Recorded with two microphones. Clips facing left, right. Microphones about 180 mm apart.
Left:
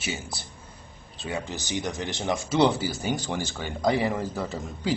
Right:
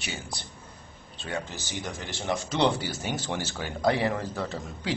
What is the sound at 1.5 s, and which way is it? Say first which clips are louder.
Speech: left 5 dB; 15° left (ahead or behind).